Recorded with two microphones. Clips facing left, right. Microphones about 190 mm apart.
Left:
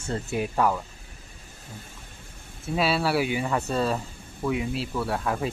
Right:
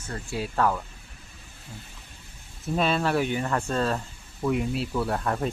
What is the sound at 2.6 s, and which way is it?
Speech, 5° left (ahead or behind).